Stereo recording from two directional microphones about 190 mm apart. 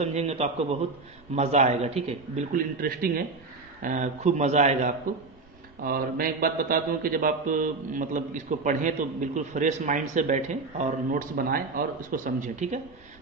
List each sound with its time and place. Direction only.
0.0 s speech: 35° right (ahead or behind)
3.8 s speech: 40° right (ahead or behind)
5.9 s speech: 50° right (ahead or behind)